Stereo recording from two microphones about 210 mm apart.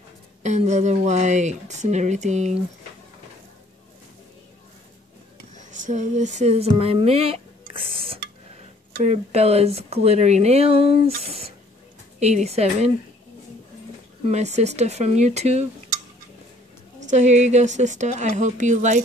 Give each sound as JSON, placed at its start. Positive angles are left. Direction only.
{"t": 0.4, "sound": "speech", "side_deg": -35}
{"t": 5.5, "sound": "speech", "side_deg": -35}
{"t": 14.2, "sound": "speech", "side_deg": -30}
{"t": 17.1, "sound": "speech", "side_deg": -35}